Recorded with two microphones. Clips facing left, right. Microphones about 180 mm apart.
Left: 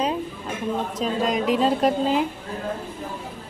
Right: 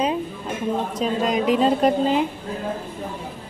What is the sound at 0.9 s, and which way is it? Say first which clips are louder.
Speech: right 1 dB; centre (ahead or behind).